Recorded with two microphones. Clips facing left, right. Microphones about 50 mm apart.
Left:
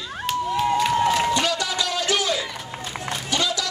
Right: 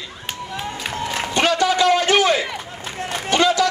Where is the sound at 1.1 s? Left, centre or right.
Right.